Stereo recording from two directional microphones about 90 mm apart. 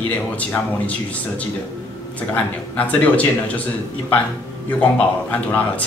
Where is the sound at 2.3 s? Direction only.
15° left (ahead or behind).